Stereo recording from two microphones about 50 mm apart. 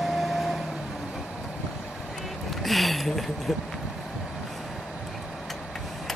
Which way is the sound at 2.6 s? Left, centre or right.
Centre.